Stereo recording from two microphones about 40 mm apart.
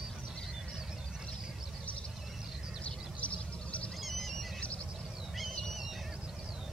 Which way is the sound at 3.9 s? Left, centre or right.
Centre.